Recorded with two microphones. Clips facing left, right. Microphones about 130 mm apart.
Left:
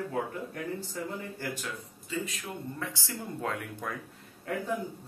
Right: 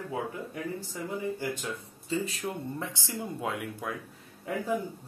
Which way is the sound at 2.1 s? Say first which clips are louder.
Right 4 dB; 30° right (ahead or behind).